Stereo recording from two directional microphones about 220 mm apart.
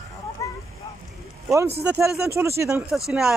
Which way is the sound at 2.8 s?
Centre (ahead or behind).